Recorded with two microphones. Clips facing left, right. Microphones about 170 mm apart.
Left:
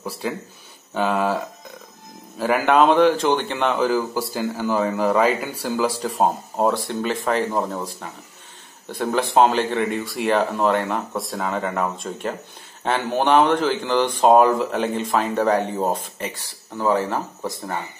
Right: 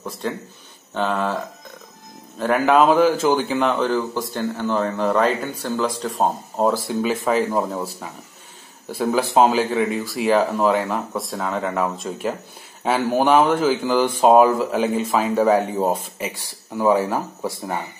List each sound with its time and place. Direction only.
0.2 s a man's voice: 5° left (ahead or behind); by 17.8 s 10° right (ahead or behind)